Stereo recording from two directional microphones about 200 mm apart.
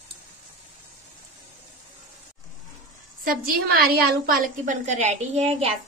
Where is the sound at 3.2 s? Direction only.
45° right (ahead or behind).